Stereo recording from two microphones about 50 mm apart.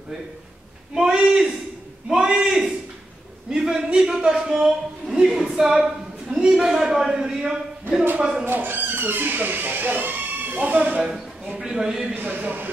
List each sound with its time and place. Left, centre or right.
0.9 s a man's voice: centre
4.5 s a sound: centre
6.3 s a man's voice: centre
8.5 s speech: right
11.0 s a man's voice: centre
12.2 s a man's voice: right